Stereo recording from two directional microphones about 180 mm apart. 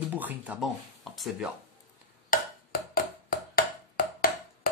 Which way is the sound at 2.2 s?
55° left (ahead or behind).